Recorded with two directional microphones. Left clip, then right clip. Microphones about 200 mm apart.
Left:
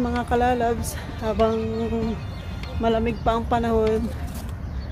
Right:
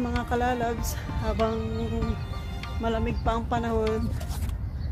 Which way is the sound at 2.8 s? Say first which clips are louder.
Left 7 dB; centre (ahead or behind).